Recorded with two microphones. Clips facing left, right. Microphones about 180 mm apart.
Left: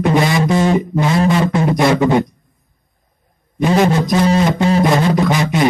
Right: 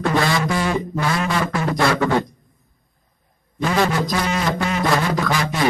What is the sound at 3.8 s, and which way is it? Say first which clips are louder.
Music: left 6 dB; 20° left (ahead or behind).